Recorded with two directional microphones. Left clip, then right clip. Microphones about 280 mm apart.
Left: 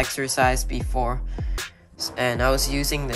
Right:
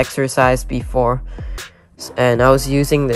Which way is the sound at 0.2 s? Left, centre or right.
Centre.